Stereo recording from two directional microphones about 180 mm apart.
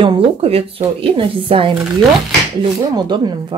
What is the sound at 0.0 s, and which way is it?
Speech, 30° right (ahead or behind).